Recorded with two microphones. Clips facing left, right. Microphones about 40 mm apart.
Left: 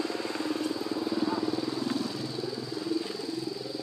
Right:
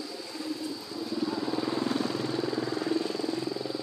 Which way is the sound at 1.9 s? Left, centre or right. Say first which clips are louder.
Right 3 dB; right.